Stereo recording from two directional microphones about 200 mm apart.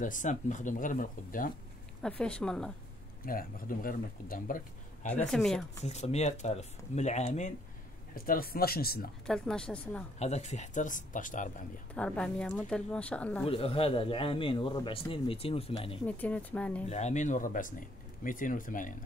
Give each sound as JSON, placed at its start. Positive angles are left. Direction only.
{"t": 0.0, "sound": "speech", "side_deg": 40}
{"t": 2.0, "sound": "speech", "side_deg": 5}
{"t": 3.3, "sound": "speech", "side_deg": 45}
{"t": 5.3, "sound": "speech", "side_deg": 0}
{"t": 5.9, "sound": "speech", "side_deg": 35}
{"t": 8.1, "sound": "speech", "side_deg": 45}
{"t": 9.2, "sound": "speech", "side_deg": 5}
{"t": 10.1, "sound": "speech", "side_deg": 35}
{"t": 11.9, "sound": "speech", "side_deg": 5}
{"t": 13.5, "sound": "a man's voice", "side_deg": 30}
{"t": 16.1, "sound": "speech", "side_deg": 5}
{"t": 16.8, "sound": "speech", "side_deg": 35}